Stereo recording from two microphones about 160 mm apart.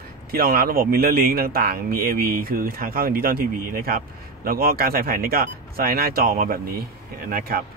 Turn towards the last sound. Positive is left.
turn(degrees=-65)  # may be behind; listen again after turning